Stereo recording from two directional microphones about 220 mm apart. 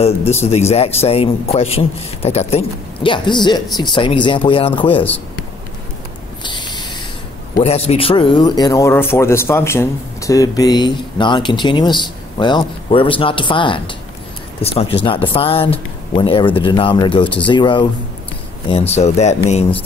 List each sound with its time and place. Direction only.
0.0 s speech: 30° left (ahead or behind)
6.4 s owl: 20° left (ahead or behind)
7.6 s speech: 30° left (ahead or behind)